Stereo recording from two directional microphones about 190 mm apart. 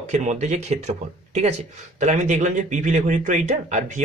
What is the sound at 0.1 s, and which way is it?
A man's voice, 40° right (ahead or behind).